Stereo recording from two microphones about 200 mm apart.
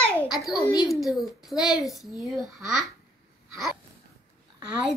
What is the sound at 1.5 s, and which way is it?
Speech, 20° left (ahead or behind).